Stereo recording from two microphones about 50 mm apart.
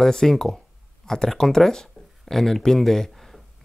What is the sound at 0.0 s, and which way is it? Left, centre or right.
Speech, centre.